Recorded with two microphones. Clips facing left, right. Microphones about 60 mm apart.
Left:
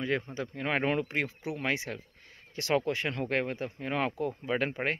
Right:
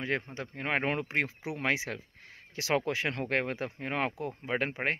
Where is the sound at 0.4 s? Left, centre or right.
Right.